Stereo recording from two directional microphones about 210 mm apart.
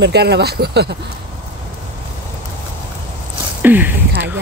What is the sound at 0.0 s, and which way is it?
Speech, 50° right (ahead or behind).